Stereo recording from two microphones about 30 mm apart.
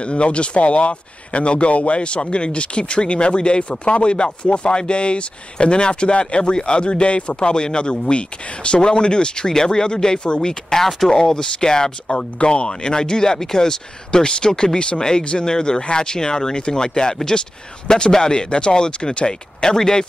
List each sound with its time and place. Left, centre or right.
0.0 s speech: left